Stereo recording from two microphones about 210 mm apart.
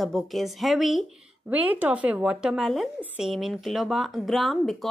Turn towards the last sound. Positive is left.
turn(degrees=0)  # may be behind; listen again after turning